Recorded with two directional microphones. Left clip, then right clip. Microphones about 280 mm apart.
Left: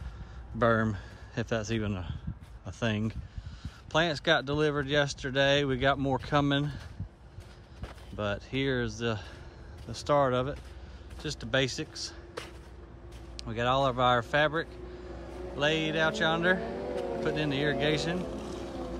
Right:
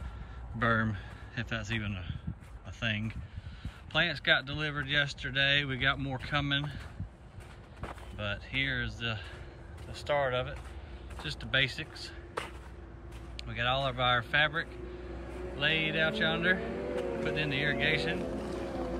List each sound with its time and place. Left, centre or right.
0.6 s speech: centre
8.2 s speech: centre
13.4 s speech: centre
16.5 s vehicle: left
17.2 s speech: centre
18.7 s vehicle: centre